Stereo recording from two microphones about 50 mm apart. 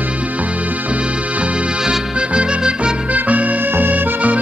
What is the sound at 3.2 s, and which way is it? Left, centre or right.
Accordion, right.